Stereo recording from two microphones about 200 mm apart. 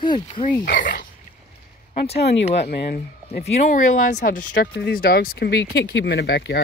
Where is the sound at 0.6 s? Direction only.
50° left (ahead or behind).